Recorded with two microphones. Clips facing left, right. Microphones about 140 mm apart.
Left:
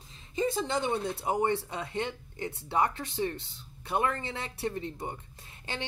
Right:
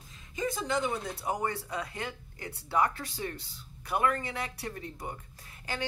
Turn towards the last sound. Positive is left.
turn(degrees=25)  # may be behind; listen again after turning